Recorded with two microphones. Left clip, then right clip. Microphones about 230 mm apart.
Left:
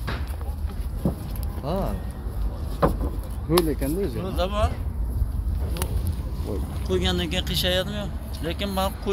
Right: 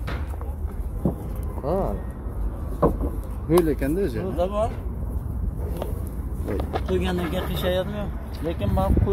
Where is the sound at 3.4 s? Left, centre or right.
Centre.